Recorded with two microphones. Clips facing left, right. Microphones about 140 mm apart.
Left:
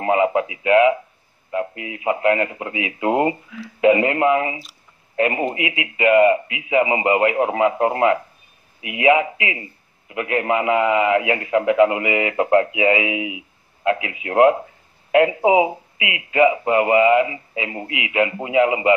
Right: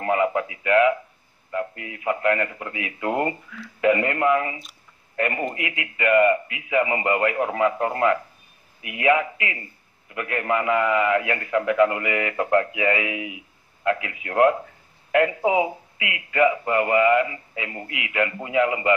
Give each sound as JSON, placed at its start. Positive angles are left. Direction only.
{"t": 0.0, "sound": "a man's voice", "side_deg": 20}